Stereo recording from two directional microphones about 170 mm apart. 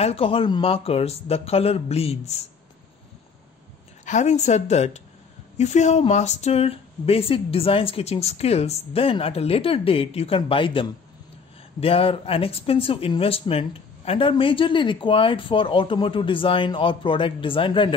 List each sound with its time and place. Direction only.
0.0 s speech: 35° left (ahead or behind)
4.0 s speech: 45° left (ahead or behind); by 17.9 s 30° left (ahead or behind)